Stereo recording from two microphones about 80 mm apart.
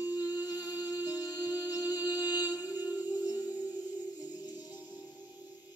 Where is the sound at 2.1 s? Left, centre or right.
Left.